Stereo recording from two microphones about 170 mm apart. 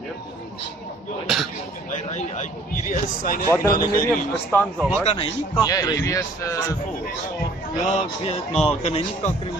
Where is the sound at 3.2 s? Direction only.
55° left (ahead or behind).